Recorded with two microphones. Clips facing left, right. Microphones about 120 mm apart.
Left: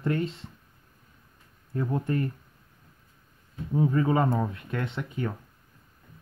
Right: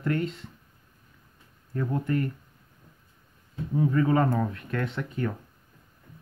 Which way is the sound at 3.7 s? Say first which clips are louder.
Right 1 dB; 20° left (ahead or behind).